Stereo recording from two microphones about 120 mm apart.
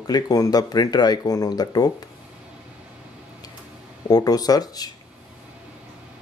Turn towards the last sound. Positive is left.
turn(degrees=30)  # may be behind; listen again after turning